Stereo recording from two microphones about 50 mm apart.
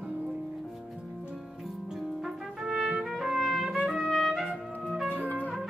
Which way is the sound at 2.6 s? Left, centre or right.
Centre.